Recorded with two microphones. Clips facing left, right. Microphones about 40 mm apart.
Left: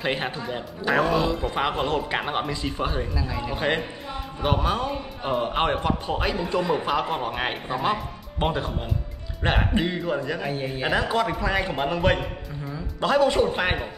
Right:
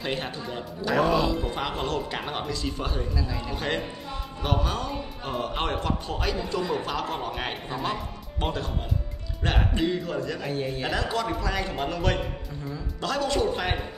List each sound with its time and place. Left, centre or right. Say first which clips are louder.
0.0 s speech: left 4 dB; left
0.9 s a man's voice: even; centre
1.5 s a man's voice: left 4 dB; centre